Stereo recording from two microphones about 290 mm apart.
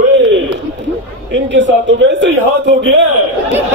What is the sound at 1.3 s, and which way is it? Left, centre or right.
A man's voice, right.